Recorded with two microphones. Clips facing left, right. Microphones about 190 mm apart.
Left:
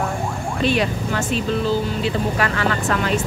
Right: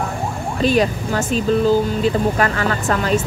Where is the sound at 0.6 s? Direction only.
40° right (ahead or behind).